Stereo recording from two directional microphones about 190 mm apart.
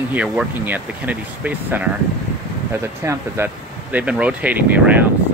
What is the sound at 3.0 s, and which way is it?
Speech, 15° right (ahead or behind).